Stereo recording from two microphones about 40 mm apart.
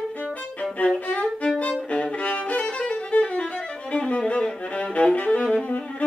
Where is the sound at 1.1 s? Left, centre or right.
Left.